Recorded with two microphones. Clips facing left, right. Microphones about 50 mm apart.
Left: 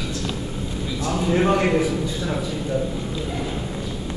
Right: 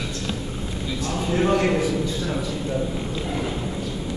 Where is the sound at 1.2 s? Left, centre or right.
Centre.